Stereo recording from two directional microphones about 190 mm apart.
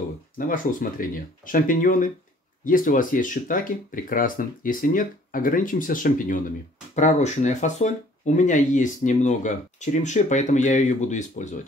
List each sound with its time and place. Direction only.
0.4 s speech: 45° left (ahead or behind)